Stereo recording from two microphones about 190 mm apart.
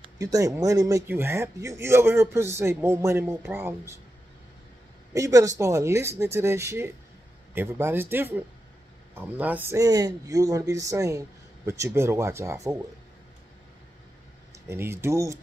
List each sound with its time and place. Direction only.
0.2 s a man's voice: 20° right (ahead or behind)
5.1 s a man's voice: 15° right (ahead or behind)
14.7 s a man's voice: 15° right (ahead or behind)